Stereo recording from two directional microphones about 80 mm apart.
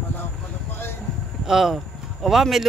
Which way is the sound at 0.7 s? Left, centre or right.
Left.